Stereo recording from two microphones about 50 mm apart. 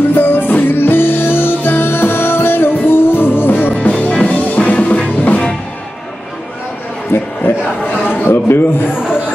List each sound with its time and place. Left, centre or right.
0.1 s music: left
4.1 s music: left
7.1 s a sound: left